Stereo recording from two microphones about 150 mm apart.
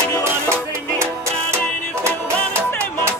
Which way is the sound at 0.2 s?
15° right (ahead or behind).